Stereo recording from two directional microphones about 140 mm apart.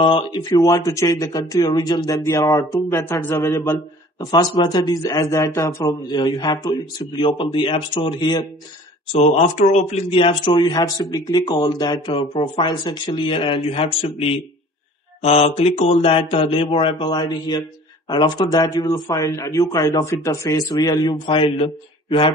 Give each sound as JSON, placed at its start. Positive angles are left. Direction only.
{"t": 0.0, "sound": "speech", "side_deg": 35}
{"t": 6.1, "sound": "speech", "side_deg": 30}
{"t": 9.1, "sound": "speech", "side_deg": 55}